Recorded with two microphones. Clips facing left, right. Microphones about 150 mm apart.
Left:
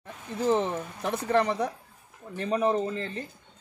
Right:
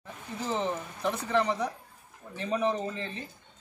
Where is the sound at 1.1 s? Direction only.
55° left (ahead or behind).